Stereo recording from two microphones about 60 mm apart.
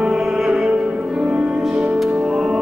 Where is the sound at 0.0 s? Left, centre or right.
Centre.